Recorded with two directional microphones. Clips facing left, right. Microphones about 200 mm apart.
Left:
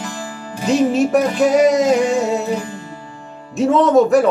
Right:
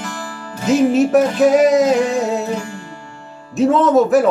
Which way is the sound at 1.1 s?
Centre (ahead or behind).